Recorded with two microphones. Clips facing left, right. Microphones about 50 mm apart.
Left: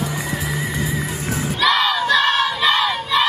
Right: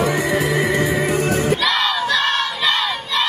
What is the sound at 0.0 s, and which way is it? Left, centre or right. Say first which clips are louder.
Music: right 7 dB; right.